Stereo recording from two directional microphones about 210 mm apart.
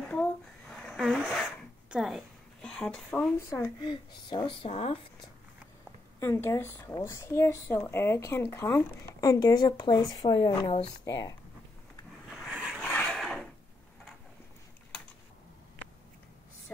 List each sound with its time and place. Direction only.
0.1 s speech: 5° left (ahead or behind); by 4.9 s 25° left (ahead or behind)
6.1 s speech: 10° left (ahead or behind)
12.3 s a sound: 5° right (ahead or behind)
12.8 s filing: 5° left (ahead or behind)